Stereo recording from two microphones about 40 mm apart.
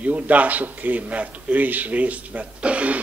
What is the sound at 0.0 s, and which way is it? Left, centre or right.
A man's voice, right.